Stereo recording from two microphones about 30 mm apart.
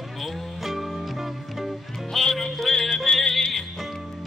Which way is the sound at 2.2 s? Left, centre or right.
Centre.